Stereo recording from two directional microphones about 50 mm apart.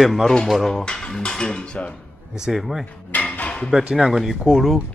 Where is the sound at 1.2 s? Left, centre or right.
Centre.